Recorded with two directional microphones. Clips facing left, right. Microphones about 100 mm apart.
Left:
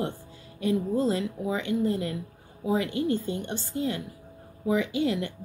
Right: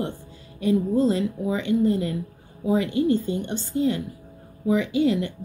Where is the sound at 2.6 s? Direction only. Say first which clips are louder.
Right 4 dB; 15° left (ahead or behind).